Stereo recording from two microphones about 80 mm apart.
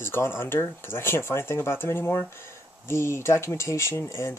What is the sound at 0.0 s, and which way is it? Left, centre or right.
Speech, left.